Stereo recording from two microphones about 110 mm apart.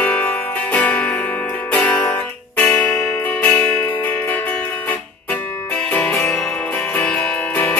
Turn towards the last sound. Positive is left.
turn(degrees=10)  # may be behind; listen again after turning